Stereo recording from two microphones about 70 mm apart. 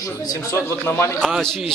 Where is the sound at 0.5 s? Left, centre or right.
Left.